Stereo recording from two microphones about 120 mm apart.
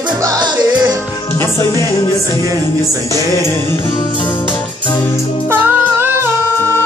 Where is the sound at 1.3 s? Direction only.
20° left (ahead or behind).